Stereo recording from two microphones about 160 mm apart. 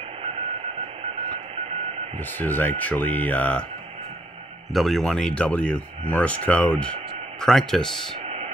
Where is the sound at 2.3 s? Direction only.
10° left (ahead or behind).